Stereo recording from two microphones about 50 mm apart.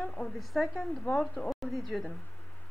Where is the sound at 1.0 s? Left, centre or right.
Left.